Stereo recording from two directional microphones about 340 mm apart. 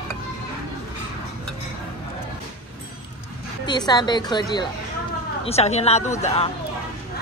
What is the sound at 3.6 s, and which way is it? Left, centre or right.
A woman's voice, centre.